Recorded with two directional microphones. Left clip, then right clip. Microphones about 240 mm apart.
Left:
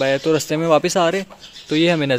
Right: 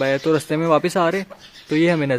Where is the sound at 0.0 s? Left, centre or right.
Centre.